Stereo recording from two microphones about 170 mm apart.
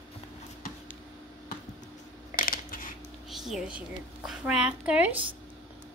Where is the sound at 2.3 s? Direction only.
55° left (ahead or behind).